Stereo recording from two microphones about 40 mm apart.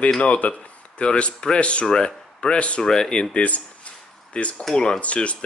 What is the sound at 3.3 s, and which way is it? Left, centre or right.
Speech, left.